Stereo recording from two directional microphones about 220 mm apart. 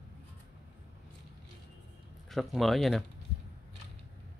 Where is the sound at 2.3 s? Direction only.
Centre (ahead or behind).